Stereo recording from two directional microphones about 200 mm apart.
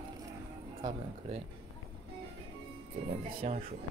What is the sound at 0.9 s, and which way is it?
Speech, 30° right (ahead or behind).